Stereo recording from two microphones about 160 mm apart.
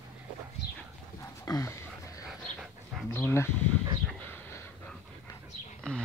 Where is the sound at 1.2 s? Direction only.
20° left (ahead or behind).